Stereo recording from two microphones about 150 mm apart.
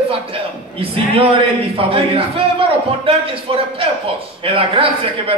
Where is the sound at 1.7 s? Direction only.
40° right (ahead or behind).